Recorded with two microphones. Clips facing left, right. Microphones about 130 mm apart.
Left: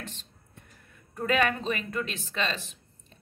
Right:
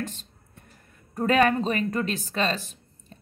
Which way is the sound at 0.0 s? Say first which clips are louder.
Right 9 dB; 40° right (ahead or behind).